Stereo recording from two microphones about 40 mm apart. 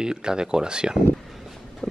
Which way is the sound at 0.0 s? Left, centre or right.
Centre.